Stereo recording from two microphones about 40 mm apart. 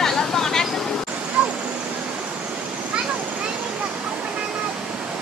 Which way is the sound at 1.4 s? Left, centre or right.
Right.